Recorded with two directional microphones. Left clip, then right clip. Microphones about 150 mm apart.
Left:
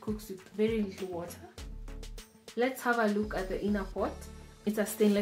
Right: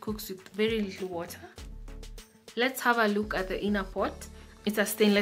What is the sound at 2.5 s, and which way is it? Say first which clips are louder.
Speech: right 3 dB; 25° right (ahead or behind).